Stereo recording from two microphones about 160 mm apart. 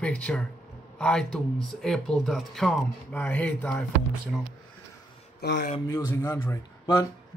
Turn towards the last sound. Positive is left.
turn(degrees=30)  # may be behind; listen again after turning